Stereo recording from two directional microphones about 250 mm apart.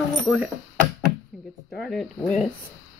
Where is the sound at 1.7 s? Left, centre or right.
Centre.